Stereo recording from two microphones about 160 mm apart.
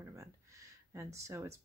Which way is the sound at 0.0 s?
20° right (ahead or behind).